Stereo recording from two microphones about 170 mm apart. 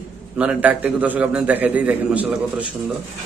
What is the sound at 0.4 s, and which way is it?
A man's voice, 5° right (ahead or behind).